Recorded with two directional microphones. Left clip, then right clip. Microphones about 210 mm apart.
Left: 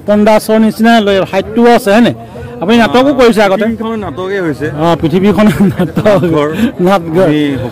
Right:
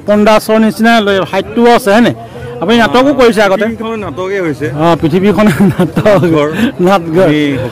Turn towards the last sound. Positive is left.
turn(degrees=-10)  # may be behind; listen again after turning